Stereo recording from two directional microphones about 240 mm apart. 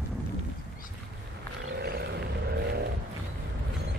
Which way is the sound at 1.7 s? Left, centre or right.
Right.